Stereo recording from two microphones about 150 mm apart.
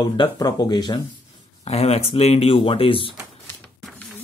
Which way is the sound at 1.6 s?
45° left (ahead or behind).